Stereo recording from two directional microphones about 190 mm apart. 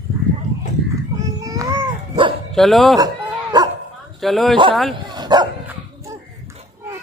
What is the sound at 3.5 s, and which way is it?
Dog, 20° right (ahead or behind).